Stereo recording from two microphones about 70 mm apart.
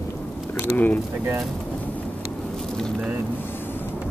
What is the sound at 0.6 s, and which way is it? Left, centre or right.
Speech, left.